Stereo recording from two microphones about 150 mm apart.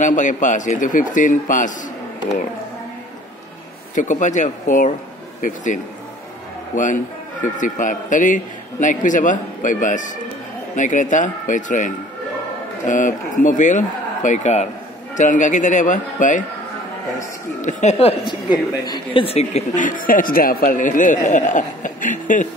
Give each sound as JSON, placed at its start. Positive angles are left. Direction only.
{"t": 0.0, "sound": "a woman's voice", "side_deg": 55}
{"t": 3.9, "sound": "a woman's voice", "side_deg": 55}
{"t": 17.6, "sound": "a woman's voice", "side_deg": 55}
{"t": 17.9, "sound": "a woman's voice", "side_deg": 35}